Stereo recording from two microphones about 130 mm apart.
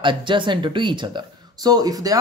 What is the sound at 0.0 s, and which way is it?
Speech, 40° right (ahead or behind).